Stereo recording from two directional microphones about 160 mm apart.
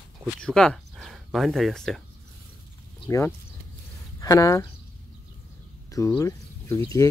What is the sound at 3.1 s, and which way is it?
Speech, 15° left (ahead or behind).